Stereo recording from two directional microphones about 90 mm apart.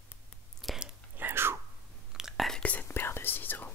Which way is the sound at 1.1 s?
25° right (ahead or behind).